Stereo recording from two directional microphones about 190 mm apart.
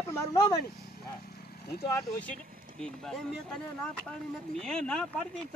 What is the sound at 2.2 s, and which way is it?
Speech, 5° left (ahead or behind).